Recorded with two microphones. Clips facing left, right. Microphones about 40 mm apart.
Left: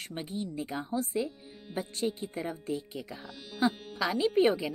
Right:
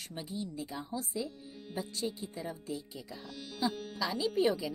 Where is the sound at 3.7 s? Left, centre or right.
Centre.